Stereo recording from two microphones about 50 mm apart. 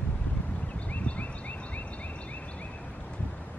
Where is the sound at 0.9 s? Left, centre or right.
Left.